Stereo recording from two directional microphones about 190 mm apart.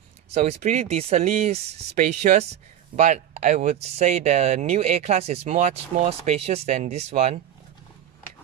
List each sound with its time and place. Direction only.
0.3 s speech: 35° right (ahead or behind)